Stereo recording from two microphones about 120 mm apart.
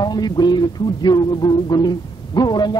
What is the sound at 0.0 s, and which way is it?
Speech, 35° left (ahead or behind).